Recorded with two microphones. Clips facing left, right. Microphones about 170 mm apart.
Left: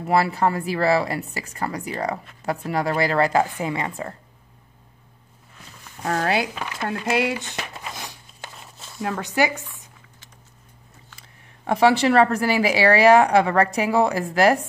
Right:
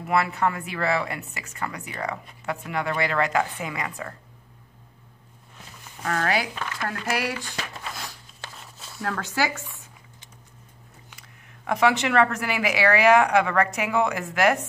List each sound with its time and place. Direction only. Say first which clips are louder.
0.0 s a woman's voice: left 3 dB; 35° left (ahead or behind)
6.0 s speech: left 3 dB; 25° left (ahead or behind)
6.8 s crumpling: left 6 dB; 20° left (ahead or behind)
8.5 s a sound: left 1 dB; centre (ahead or behind)
9.0 s speech: left 4 dB; 20° left (ahead or behind)
11.1 s a woman's voice: even; 30° left (ahead or behind)